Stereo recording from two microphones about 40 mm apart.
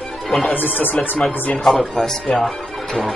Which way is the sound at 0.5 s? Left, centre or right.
Left.